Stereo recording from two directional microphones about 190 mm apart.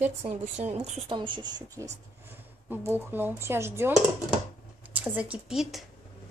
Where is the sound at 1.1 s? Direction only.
25° right (ahead or behind).